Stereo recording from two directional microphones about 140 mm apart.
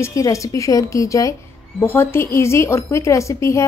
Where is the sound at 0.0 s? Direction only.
20° left (ahead or behind).